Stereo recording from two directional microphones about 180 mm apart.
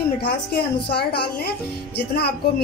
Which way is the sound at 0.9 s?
60° left (ahead or behind).